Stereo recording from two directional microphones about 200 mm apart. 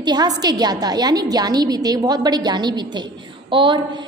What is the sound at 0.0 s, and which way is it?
A woman's voice, 20° right (ahead or behind).